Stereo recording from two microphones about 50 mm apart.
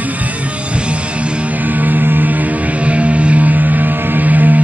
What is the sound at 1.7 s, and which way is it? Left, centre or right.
Music, right.